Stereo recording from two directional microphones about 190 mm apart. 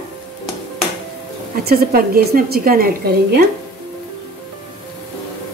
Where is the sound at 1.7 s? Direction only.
55° right (ahead or behind).